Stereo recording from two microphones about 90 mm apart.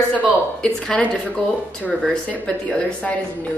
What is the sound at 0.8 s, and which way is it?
Speech, 10° left (ahead or behind).